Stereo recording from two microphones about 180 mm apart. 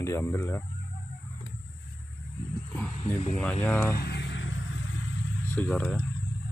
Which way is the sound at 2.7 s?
10° left (ahead or behind).